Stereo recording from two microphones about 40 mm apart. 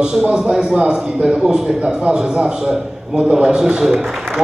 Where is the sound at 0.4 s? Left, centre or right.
Centre.